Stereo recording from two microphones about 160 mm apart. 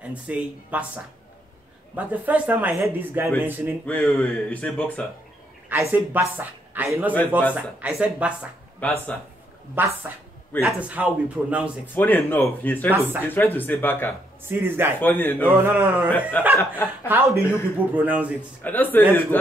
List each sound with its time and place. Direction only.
0.0 s speech: 10° right (ahead or behind)
3.8 s speech: 5° left (ahead or behind)
5.7 s speech: 15° right (ahead or behind)
8.7 s speech: 10° left (ahead or behind)
9.8 s speech: 10° right (ahead or behind)
11.8 s speech: 10° left (ahead or behind)
12.9 s speech: 10° right (ahead or behind)
13.3 s speech: 15° left (ahead or behind)
14.5 s speech: 15° right (ahead or behind)
15.0 s speech: 10° left (ahead or behind)
15.4 s speech: 15° right (ahead or behind)
16.1 s speech: 10° left (ahead or behind)
17.9 s speech: 10° right (ahead or behind)
18.6 s speech: 10° left (ahead or behind)